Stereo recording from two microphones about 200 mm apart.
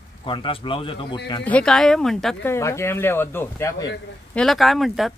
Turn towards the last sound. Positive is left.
turn(degrees=0)  # may be behind; listen again after turning